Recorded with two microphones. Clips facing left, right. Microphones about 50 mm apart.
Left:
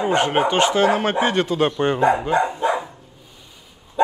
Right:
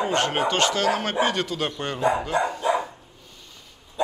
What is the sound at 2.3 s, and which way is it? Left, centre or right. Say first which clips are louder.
Dog: left 4 dB; left.